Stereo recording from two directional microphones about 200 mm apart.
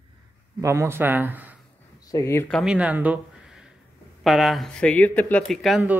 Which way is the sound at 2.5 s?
5° right (ahead or behind).